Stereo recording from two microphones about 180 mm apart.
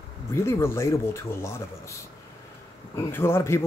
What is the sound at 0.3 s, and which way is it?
Speech, 15° left (ahead or behind).